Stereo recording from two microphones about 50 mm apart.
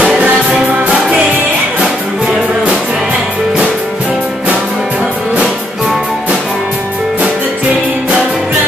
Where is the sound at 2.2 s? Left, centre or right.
Centre.